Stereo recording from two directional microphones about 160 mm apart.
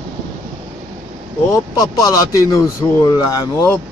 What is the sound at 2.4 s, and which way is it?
Speech, 20° left (ahead or behind).